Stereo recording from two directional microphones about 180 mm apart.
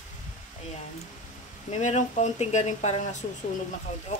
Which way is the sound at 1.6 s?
40° left (ahead or behind).